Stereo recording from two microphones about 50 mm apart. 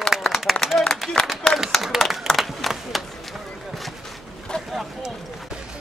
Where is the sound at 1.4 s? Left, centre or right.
Centre.